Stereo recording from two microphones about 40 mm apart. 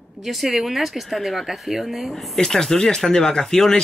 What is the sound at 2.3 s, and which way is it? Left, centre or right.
Speech, centre.